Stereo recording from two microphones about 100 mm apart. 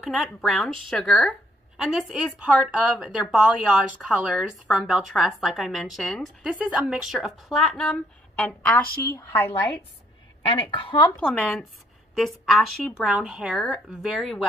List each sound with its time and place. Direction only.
0.0 s speech: centre (ahead or behind)
6.4 s speech: 10° right (ahead or behind)
8.4 s a woman's voice: 10° left (ahead or behind)
10.5 s a woman's voice: 55° left (ahead or behind)
11.2 s a woman's voice: 10° left (ahead or behind)
12.2 s speech: centre (ahead or behind)